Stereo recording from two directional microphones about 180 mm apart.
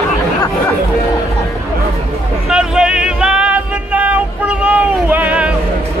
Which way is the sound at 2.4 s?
5° right (ahead or behind).